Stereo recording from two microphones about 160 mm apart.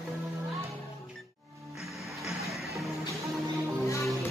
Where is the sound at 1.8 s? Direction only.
Centre (ahead or behind).